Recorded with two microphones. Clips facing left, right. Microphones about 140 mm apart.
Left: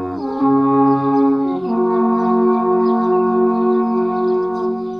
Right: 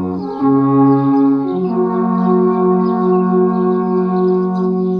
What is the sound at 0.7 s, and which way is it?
Music, 5° left (ahead or behind).